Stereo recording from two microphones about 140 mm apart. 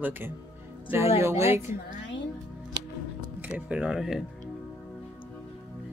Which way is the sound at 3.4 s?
10° right (ahead or behind).